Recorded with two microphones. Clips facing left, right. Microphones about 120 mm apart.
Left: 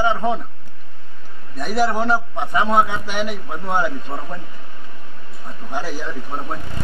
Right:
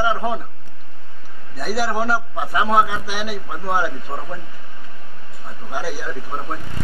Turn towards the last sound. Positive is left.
turn(degrees=-5)  # may be behind; listen again after turning